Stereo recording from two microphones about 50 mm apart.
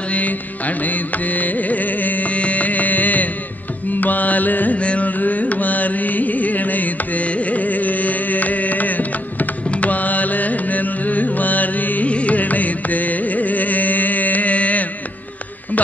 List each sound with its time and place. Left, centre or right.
0.1 s carnatic music: left
4.0 s music: left
4.7 s carnatic music: left